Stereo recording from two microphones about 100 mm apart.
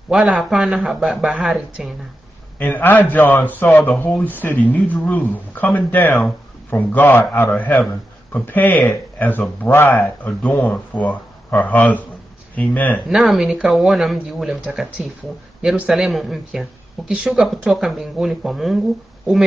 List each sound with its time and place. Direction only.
0.1 s speech: 10° right (ahead or behind)
2.6 s a man's voice: 20° left (ahead or behind)
13.1 s speech: 5° right (ahead or behind)
15.6 s speech: 10° right (ahead or behind)